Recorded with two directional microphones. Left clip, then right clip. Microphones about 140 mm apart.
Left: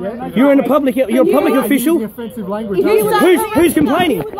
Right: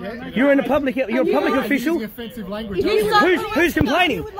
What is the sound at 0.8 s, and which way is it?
Speech, 15° left (ahead or behind).